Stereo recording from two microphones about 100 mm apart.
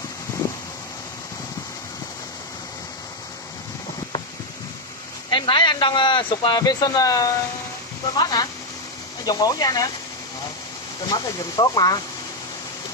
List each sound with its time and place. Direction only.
5.3 s speech: 50° left (ahead or behind)
11.1 s speech: 45° left (ahead or behind)